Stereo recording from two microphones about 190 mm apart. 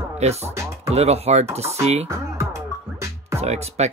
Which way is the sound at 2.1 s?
15° right (ahead or behind).